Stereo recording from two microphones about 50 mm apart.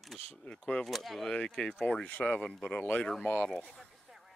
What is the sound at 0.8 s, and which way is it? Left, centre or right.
Speech, centre.